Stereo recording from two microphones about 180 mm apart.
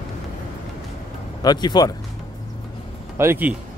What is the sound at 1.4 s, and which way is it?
Speech, 25° left (ahead or behind).